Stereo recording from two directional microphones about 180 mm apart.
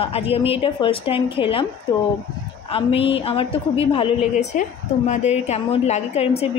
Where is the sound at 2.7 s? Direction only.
30° left (ahead or behind).